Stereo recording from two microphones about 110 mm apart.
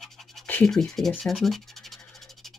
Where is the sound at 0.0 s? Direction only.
Centre (ahead or behind).